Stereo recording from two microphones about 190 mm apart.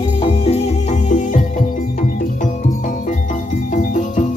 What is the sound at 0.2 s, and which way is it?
Music, 30° left (ahead or behind).